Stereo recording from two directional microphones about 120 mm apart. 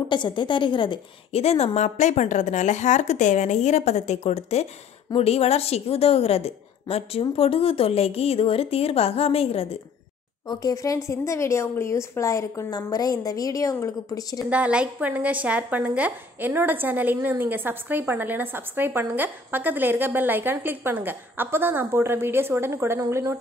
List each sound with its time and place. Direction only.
0.1 s a woman's voice: 40° left (ahead or behind)
1.3 s a woman's voice: 60° left (ahead or behind)
10.5 s a woman's voice: 30° left (ahead or behind)
14.5 s a woman's voice: 10° right (ahead or behind)